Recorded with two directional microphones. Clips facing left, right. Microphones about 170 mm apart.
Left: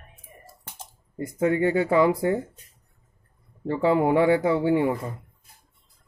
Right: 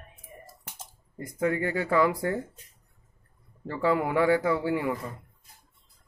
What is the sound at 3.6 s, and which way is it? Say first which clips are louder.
A man's voice: left 5 dB; 25° left (ahead or behind).